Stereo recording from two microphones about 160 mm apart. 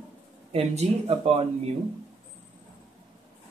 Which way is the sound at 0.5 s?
40° right (ahead or behind).